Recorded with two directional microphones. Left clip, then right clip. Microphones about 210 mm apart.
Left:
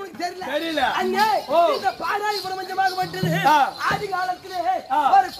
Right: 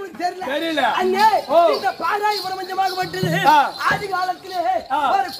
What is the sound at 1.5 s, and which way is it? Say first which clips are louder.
A man's voice: right 3 dB; 10° right (ahead or behind).